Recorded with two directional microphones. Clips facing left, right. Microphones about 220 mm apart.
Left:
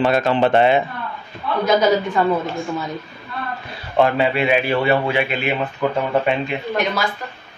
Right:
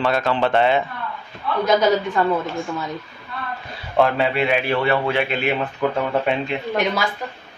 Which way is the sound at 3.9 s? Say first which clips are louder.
Left 1 dB; centre (ahead or behind).